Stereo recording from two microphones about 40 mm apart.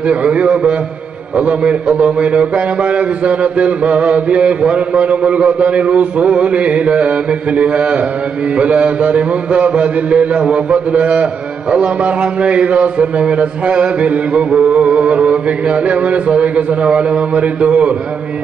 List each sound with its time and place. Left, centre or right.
0.1 s a man's voice: right
1.7 s a man's voice: right